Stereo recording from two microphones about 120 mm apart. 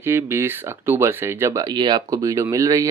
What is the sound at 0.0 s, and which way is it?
Speech, 20° right (ahead or behind).